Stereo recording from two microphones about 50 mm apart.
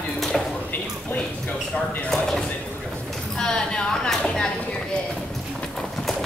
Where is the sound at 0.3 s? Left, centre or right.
Centre.